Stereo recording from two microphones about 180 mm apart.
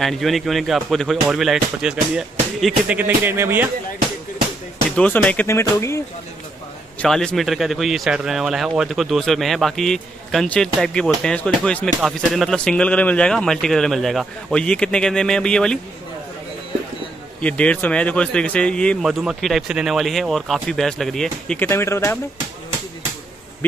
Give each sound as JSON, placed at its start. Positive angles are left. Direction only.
{"t": 0.0, "sound": "speech", "side_deg": 0}
{"t": 4.9, "sound": "speech", "side_deg": 5}
{"t": 7.0, "sound": "speech", "side_deg": 5}
{"t": 17.4, "sound": "speech", "side_deg": 5}